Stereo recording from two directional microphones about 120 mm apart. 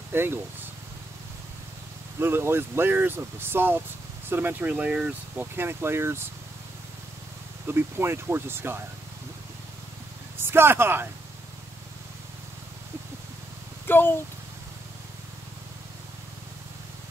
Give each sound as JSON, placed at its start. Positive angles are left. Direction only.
{"t": 0.1, "sound": "speech", "side_deg": -20}
{"t": 2.1, "sound": "speech", "side_deg": -20}
{"t": 7.6, "sound": "speech", "side_deg": -20}
{"t": 10.4, "sound": "speech", "side_deg": -20}
{"t": 13.8, "sound": "speech", "side_deg": 15}